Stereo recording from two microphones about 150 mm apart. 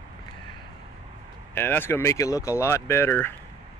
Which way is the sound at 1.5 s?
15° left (ahead or behind).